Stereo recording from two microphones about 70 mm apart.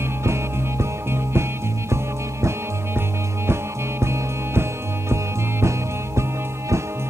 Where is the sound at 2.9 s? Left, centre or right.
Right.